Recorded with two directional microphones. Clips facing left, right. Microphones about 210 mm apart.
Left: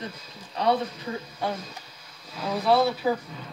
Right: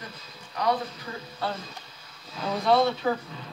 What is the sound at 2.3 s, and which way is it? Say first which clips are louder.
Speech: even; 5° left (ahead or behind).